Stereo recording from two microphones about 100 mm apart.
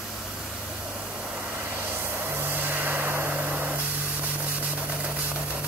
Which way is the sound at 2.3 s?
20° right (ahead or behind).